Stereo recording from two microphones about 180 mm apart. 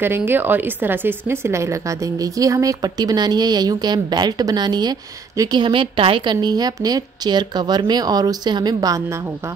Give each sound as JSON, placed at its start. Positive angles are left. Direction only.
{"t": 0.0, "sound": "speech", "side_deg": -10}